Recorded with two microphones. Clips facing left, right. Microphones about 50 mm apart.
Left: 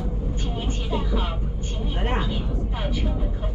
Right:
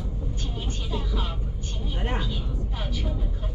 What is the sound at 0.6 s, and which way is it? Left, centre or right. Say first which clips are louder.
Music: left 5 dB; centre.